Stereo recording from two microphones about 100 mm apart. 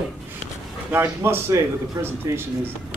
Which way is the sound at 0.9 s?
20° right (ahead or behind).